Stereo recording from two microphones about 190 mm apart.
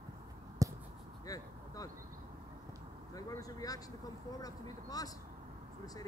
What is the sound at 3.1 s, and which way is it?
Vehicle, 20° left (ahead or behind).